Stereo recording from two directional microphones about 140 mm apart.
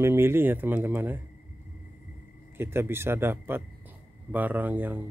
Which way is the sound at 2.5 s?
15° right (ahead or behind).